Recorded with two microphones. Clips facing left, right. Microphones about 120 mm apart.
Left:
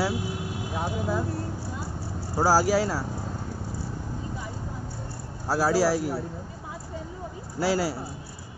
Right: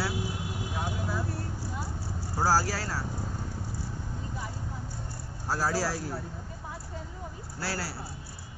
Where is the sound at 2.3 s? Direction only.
15° left (ahead or behind).